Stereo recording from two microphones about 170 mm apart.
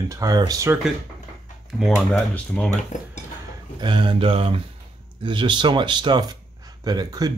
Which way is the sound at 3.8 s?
30° right (ahead or behind).